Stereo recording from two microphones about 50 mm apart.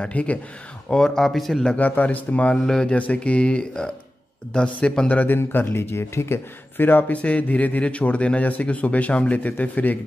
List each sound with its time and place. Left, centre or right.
0.0 s speech: left
0.8 s speech: centre
2.0 s speech: left
2.5 s speech: centre
3.0 s speech: left
5.0 s speech: left
6.8 s speech: left
7.2 s speech: left